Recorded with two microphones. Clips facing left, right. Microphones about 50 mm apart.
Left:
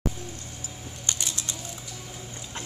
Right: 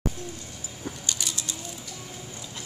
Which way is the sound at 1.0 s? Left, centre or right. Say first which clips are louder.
Left 3 dB; left.